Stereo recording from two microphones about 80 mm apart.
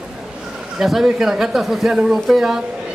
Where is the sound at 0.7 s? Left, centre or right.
Centre.